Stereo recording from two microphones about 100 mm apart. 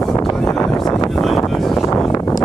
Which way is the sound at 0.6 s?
35° left (ahead or behind).